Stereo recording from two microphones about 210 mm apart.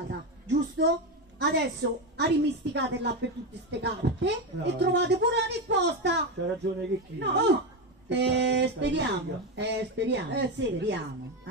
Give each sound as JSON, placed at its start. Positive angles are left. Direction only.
{"t": 0.1, "sound": "speech", "side_deg": -55}